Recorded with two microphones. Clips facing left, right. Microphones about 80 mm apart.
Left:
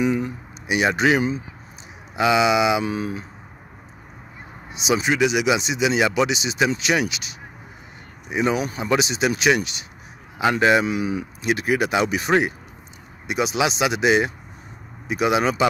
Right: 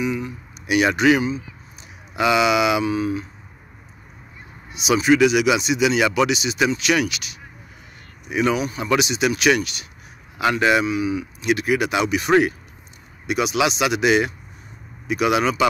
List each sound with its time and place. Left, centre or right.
0.0 s a sound: left
0.7 s speech: left
2.1 s speech: left
2.8 s speech: left
4.7 s speech: left
10.9 s speech: left